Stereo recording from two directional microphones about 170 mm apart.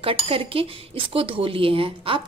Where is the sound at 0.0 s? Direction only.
35° right (ahead or behind).